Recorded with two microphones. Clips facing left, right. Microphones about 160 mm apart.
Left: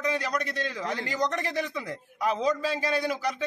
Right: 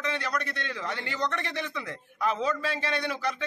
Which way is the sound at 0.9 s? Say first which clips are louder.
Left 3 dB; 40° left (ahead or behind).